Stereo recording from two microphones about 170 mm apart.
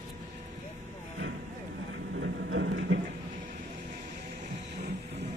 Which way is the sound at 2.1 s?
90° right.